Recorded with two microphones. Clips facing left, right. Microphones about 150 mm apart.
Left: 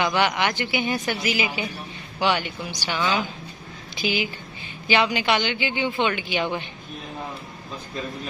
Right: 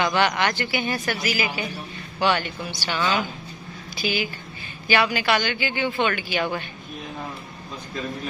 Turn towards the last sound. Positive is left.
turn(degrees=20)  # may be behind; listen again after turning